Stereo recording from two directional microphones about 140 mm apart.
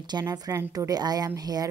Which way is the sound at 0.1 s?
30° right (ahead or behind).